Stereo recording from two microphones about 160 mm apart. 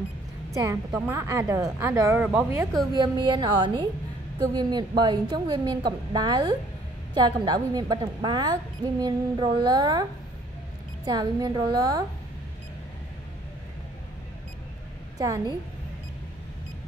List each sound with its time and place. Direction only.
0.6 s a woman's voice: 15° right (ahead or behind)
2.9 s a woman's voice: 30° right (ahead or behind)
11.1 s a woman's voice: 25° right (ahead or behind)
15.1 s a woman's voice: 20° right (ahead or behind)